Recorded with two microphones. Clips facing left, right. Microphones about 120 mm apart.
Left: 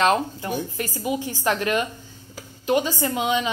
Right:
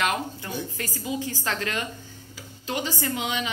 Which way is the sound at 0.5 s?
15° left (ahead or behind).